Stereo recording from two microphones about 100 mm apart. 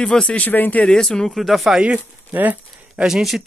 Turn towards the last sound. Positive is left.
turn(degrees=-5)  # may be behind; listen again after turning